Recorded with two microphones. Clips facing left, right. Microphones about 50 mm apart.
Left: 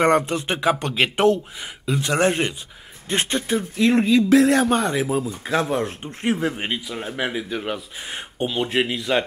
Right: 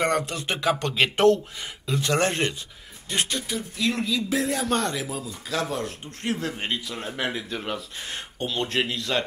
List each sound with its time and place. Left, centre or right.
0.0 s speech: left
3.1 s speech: left
4.3 s speech: left
4.6 s speech: centre